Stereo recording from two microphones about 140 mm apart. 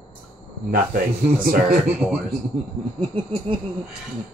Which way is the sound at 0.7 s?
80° right.